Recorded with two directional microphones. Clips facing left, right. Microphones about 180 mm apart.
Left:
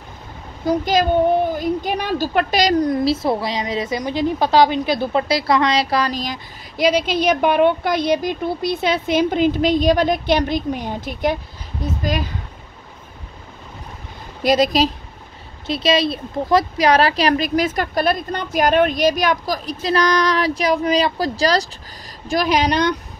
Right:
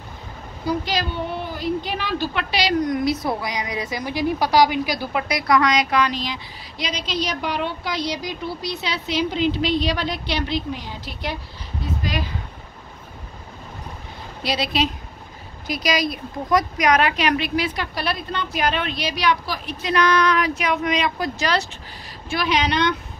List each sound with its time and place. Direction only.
0.7 s a woman's voice: 45° left (ahead or behind)
2.9 s a woman's voice: 30° left (ahead or behind); by 12.3 s 45° left (ahead or behind)
14.4 s a woman's voice: 45° left (ahead or behind)
15.6 s a woman's voice: 30° left (ahead or behind)